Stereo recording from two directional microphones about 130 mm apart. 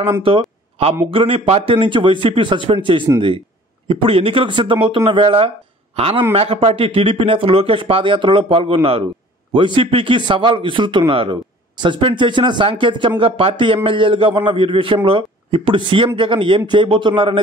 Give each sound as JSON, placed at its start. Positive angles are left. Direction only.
{"t": 0.2, "sound": "a man's voice", "side_deg": -45}